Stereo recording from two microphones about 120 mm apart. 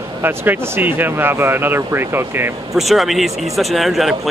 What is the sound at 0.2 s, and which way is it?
Speech, 15° right (ahead or behind).